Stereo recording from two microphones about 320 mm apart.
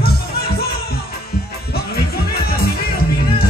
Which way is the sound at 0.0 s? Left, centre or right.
Left.